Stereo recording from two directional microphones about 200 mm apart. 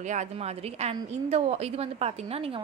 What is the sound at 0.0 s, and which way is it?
A woman's voice, 35° right (ahead or behind).